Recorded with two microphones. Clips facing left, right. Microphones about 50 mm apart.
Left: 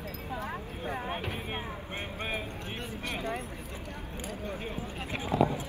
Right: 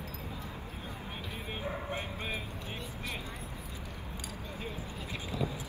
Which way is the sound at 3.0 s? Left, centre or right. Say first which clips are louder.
Left 9 dB; left.